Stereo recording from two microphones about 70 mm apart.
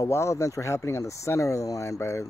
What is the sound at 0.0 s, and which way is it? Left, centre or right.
Speech, left.